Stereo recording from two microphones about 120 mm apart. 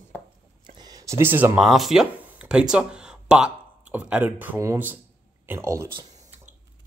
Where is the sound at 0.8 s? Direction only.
30° right (ahead or behind).